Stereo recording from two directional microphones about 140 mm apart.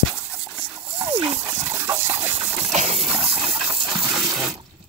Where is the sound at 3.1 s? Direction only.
5° right (ahead or behind).